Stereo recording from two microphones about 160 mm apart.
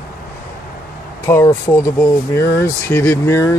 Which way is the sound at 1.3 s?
15° left (ahead or behind).